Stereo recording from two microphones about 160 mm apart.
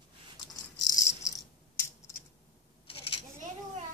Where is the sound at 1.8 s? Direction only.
15° left (ahead or behind).